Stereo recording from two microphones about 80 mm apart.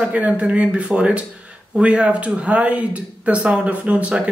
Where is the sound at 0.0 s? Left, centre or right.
Centre.